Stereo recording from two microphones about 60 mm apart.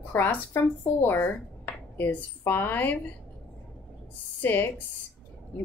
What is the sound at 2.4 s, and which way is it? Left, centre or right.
Speech, left.